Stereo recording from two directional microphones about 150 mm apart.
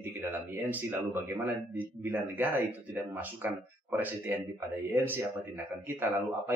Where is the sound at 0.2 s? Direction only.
10° right (ahead or behind).